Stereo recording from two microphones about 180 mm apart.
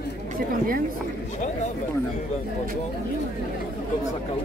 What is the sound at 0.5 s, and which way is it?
Speech, 55° right (ahead or behind).